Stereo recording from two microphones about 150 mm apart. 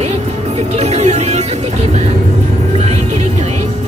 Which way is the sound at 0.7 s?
45° right (ahead or behind).